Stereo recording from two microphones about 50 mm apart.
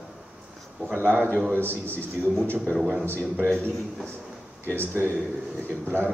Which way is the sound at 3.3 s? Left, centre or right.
Right.